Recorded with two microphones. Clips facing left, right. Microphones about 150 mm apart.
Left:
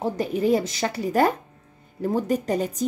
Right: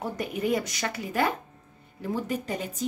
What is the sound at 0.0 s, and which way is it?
A woman's voice, 30° left (ahead or behind).